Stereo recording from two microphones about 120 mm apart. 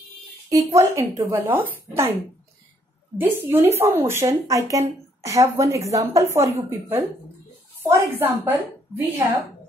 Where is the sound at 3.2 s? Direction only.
20° right (ahead or behind).